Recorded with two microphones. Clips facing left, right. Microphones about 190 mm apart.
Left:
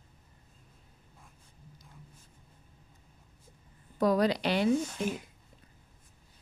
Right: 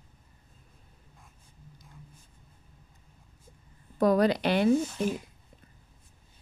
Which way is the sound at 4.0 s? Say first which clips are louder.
Right 3 dB; 55° right (ahead or behind).